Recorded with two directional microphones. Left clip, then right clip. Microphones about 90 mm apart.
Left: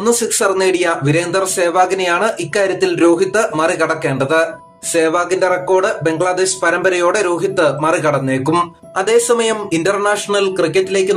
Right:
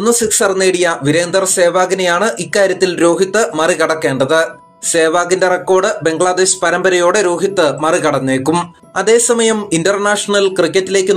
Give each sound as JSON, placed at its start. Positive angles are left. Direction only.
{"t": 0.0, "sound": "speech", "side_deg": -35}